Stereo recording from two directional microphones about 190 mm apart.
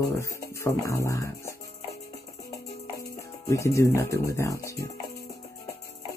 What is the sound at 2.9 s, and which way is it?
Speech, 15° left (ahead or behind).